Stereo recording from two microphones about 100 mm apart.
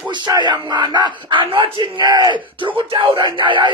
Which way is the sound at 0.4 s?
45° right (ahead or behind).